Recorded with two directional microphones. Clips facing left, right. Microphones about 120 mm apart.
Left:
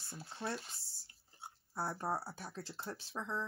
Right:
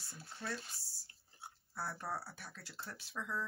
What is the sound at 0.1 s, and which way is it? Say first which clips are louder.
Speech: left 3 dB; 20° left (ahead or behind).